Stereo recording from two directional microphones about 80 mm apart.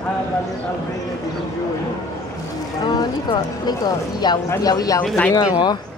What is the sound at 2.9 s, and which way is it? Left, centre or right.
Speech, left.